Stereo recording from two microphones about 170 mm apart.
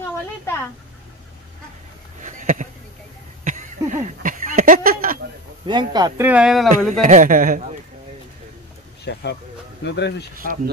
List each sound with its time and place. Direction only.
2.2 s a sound: 45° right (ahead or behind)
5.7 s speech: 25° right (ahead or behind)
6.2 s speech: 5° right (ahead or behind)
6.9 s a man's voice: 50° right (ahead or behind)
9.0 s speech: 80° left
9.8 s speech: 90° left
10.3 s speech: 55° right (ahead or behind)